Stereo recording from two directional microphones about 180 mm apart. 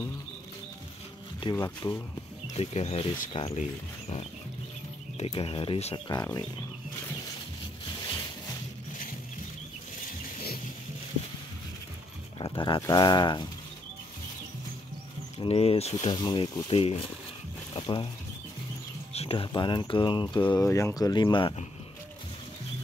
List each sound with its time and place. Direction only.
1.5 s speech: 15° left (ahead or behind)
2.4 s speech: 35° left (ahead or behind)
5.1 s speech: 35° left (ahead or behind)
6.0 s speech: 20° left (ahead or behind)
12.4 s speech: 25° left (ahead or behind)
15.3 s speech: 35° left (ahead or behind)
16.2 s speech: 20° left (ahead or behind)
19.1 s speech: 30° left (ahead or behind)